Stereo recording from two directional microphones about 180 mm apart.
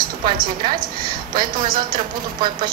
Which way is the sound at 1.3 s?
50° right (ahead or behind).